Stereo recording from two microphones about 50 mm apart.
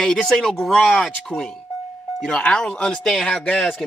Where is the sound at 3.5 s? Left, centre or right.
Left.